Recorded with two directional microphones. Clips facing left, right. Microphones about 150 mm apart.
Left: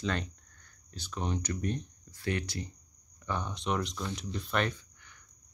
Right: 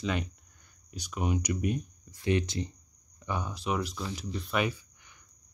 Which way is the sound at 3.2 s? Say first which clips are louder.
Right 1 dB; 10° right (ahead or behind).